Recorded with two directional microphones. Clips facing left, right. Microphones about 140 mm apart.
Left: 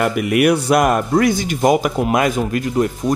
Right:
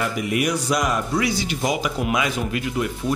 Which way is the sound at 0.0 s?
65° left (ahead or behind).